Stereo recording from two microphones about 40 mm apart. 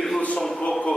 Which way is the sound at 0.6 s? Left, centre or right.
Left.